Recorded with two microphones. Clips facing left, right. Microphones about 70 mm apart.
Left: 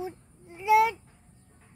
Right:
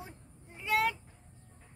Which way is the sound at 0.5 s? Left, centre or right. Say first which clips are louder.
Left 9 dB; centre.